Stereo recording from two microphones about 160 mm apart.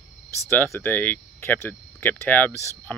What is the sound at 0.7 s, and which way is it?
Speech, 10° left (ahead or behind).